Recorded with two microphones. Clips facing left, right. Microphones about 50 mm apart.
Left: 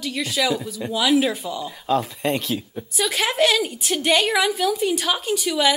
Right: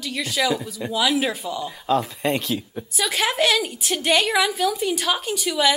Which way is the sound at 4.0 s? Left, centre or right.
Right.